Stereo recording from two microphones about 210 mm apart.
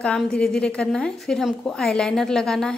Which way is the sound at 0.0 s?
5° left (ahead or behind).